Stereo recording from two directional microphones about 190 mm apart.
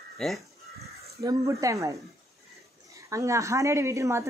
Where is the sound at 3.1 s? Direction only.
15° right (ahead or behind).